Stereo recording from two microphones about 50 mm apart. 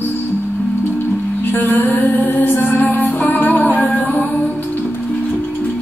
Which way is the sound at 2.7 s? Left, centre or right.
Left.